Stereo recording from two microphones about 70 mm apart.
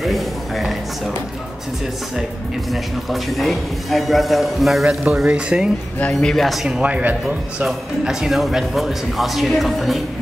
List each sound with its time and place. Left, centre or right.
0.0 s a sound: centre
2.7 s a man's voice: centre
5.0 s speech: centre
6.1 s a man's voice: centre
6.8 s a man's voice: right; by 9.9 s centre